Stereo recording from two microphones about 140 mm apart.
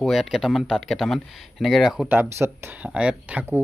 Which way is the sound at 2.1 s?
15° right (ahead or behind).